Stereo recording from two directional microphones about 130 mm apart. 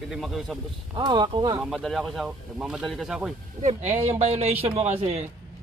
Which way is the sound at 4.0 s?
55° right (ahead or behind).